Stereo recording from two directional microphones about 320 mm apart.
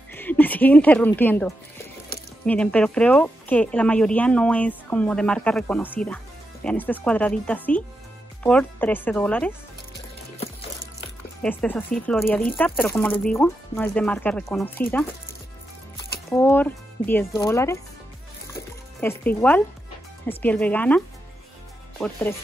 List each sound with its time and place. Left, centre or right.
0.1 s speech: centre
11.4 s speech: centre
16.3 s speech: centre
18.5 s music: centre
20.2 s speech: centre
22.0 s speech: centre